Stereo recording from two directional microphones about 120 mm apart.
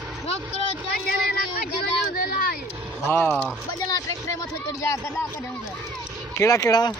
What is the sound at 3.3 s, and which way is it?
Speech, centre (ahead or behind).